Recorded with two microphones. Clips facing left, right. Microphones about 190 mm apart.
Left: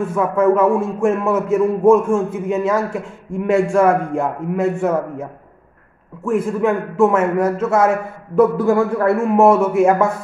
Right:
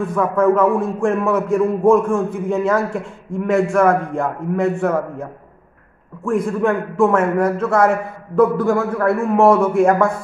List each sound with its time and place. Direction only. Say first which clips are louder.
0.1 s a man's voice: even; 5° left (ahead or behind)
2.0 s a man's voice: even; 25° left (ahead or behind)
2.3 s a man's voice: even; 5° left (ahead or behind)
6.2 s a man's voice: even; 5° left (ahead or behind)